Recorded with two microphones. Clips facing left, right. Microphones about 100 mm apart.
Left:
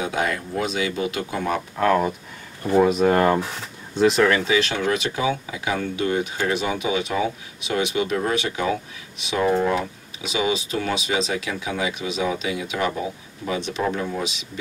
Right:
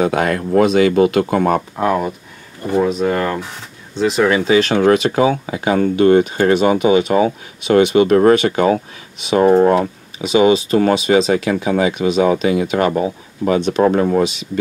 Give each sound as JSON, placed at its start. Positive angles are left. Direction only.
{"t": 0.0, "sound": "speech", "side_deg": -65}
{"t": 2.7, "sound": "speech", "side_deg": 5}
{"t": 3.9, "sound": "speech", "side_deg": 0}
{"t": 4.4, "sound": "speech", "side_deg": -40}
{"t": 4.7, "sound": "speech", "side_deg": -55}
{"t": 9.3, "sound": "speech", "side_deg": -45}